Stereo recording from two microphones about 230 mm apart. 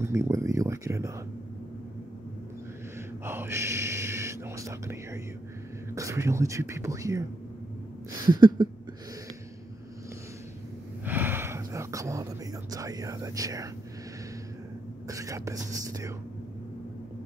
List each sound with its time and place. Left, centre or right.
0.0 s speech: centre
3.3 s speech: centre
8.3 s a sound: centre
11.1 s a sound: centre
12.7 s speech: centre
15.0 s speech: centre